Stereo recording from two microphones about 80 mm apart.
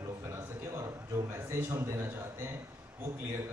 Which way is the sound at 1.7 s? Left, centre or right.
Right.